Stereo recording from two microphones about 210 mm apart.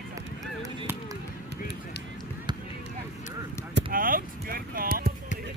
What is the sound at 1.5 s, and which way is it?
Run, 50° right (ahead or behind).